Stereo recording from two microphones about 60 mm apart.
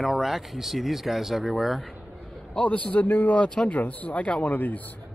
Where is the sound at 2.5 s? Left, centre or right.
Left.